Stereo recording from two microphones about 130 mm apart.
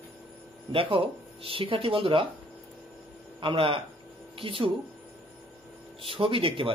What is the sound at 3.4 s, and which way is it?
A man's voice, 40° right (ahead or behind).